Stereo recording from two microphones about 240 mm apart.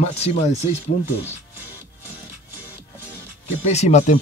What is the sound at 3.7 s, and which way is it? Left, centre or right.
Speech, left.